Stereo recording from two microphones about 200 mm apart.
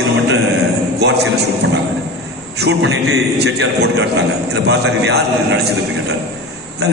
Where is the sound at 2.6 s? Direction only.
65° right (ahead or behind).